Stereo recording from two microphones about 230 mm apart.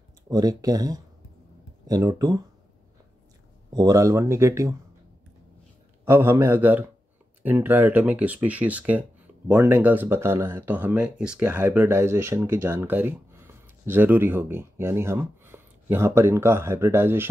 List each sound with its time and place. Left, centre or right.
0.3 s speech: centre
3.7 s speech: centre
6.0 s speech: centre